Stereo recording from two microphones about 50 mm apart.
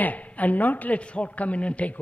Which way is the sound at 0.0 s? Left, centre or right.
Left.